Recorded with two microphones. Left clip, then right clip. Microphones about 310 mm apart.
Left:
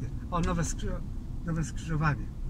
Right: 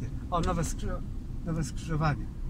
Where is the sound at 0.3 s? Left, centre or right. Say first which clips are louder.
Right 2 dB; right.